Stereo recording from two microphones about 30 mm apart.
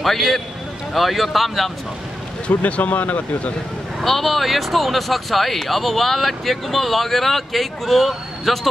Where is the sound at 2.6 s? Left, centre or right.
Left.